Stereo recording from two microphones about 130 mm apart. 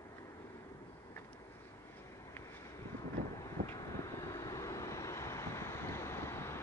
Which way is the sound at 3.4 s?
25° left (ahead or behind).